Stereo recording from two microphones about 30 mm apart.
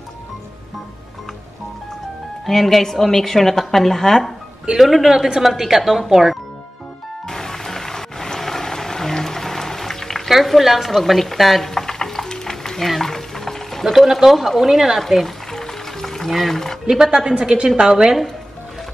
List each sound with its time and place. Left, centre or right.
2.4 s speech: centre
4.7 s speech: centre
5.0 s a woman's voice: centre
7.2 s rain: centre
10.3 s speech: centre
10.9 s speech: centre
11.7 s stir: centre
13.8 s a woman's voice: centre
15.0 s speech: centre
15.5 s music: centre
16.3 s speech: centre
17.0 s a woman's voice: right